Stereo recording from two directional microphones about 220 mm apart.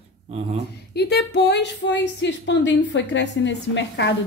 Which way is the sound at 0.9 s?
50° left (ahead or behind).